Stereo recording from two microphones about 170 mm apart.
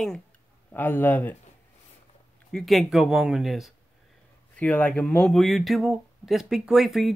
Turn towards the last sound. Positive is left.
turn(degrees=0)  # may be behind; listen again after turning